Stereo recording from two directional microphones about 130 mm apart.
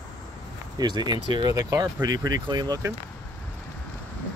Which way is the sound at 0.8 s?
35° right (ahead or behind).